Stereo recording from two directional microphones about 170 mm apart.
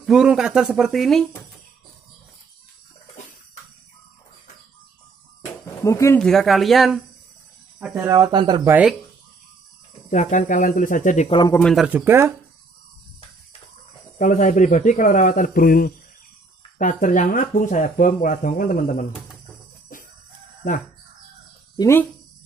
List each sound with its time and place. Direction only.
0.0 s speech: 5° right (ahead or behind)
5.4 s music: 20° left (ahead or behind)
6.1 s speech: centre (ahead or behind)
8.1 s speech: 25° right (ahead or behind)
10.0 s speech: 45° left (ahead or behind)
11.2 s a man's voice: 30° left (ahead or behind)
11.6 s speech: centre (ahead or behind)
14.1 s speech: 50° left (ahead or behind)
21.7 s speech: 15° left (ahead or behind)